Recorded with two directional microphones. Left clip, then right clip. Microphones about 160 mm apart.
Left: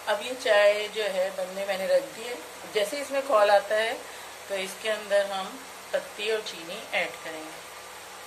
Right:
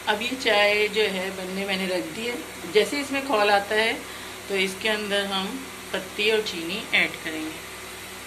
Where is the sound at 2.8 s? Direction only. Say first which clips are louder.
Right 5 dB; 50° left (ahead or behind).